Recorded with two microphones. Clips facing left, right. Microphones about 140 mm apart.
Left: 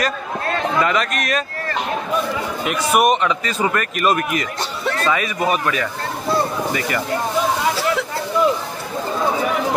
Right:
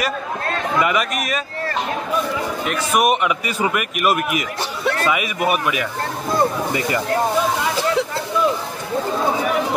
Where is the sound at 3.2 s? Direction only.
10° right (ahead or behind).